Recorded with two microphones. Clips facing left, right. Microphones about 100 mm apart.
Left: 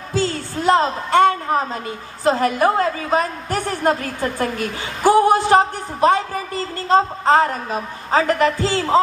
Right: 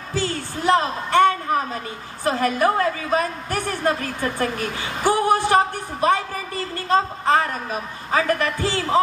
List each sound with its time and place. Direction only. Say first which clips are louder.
0.2 s a sound: left 3 dB; 25° left (ahead or behind)
2.2 s speech: left 3 dB; 25° left (ahead or behind)
4.0 s a woman's voice: left 2 dB; 35° left (ahead or behind)
5.1 s speech: left 4 dB; 25° left (ahead or behind)